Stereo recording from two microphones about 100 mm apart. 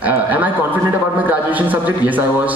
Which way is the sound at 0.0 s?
15° right (ahead or behind).